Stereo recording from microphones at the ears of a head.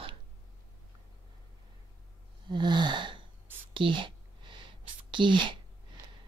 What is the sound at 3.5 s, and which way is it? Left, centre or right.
Whispering, right.